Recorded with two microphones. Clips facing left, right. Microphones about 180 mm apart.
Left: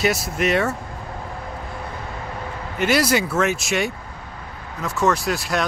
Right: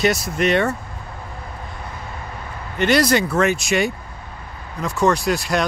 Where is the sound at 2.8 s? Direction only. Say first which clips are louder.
Right 2 dB; 5° left (ahead or behind).